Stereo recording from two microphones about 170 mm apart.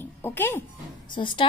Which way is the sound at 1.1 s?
30° left (ahead or behind).